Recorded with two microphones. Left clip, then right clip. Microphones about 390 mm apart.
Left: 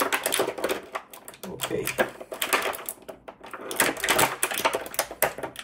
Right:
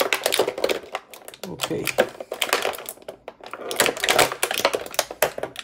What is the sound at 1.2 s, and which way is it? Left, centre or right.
Typewriter, centre.